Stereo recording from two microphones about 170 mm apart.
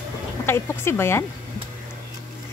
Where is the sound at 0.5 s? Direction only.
15° left (ahead or behind).